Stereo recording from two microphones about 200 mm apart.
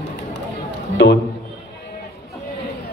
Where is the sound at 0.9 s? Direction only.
55° left (ahead or behind).